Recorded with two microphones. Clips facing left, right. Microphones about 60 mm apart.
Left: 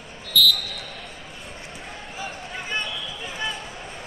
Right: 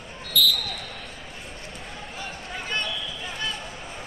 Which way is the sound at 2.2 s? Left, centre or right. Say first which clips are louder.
Left 2 dB; centre.